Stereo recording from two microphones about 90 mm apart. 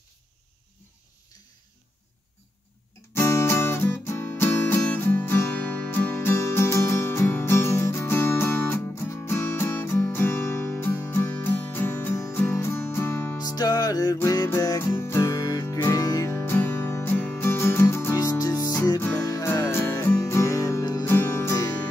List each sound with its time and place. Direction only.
3.1 s music: 30° left (ahead or behind)
13.4 s music: 45° left (ahead or behind)
16.4 s music: 25° left (ahead or behind); by 19.4 s 40° left (ahead or behind)
19.4 s music: 30° left (ahead or behind)
21.0 s music: 25° left (ahead or behind)